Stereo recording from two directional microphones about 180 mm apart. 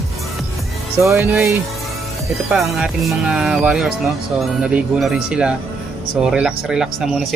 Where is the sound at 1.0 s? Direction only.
15° right (ahead or behind).